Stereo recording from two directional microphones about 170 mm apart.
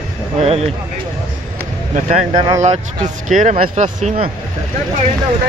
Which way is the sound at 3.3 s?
50° right (ahead or behind).